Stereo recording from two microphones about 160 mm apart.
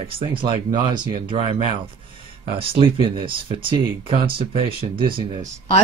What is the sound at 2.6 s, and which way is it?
Speech, 35° right (ahead or behind).